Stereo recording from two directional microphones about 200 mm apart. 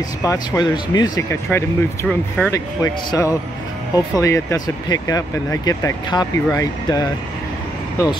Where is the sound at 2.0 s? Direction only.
5° left (ahead or behind).